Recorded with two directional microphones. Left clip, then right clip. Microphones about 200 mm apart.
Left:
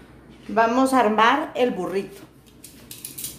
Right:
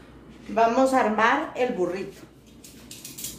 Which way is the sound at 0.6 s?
35° left (ahead or behind).